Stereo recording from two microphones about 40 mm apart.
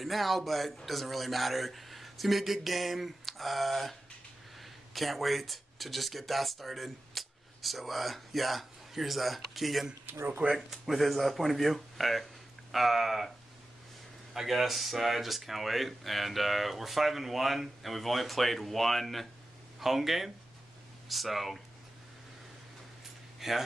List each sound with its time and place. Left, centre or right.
0.0 s speech: centre
10.0 s speech: right
10.5 s speech: centre
14.3 s speech: centre
23.4 s a man's voice: centre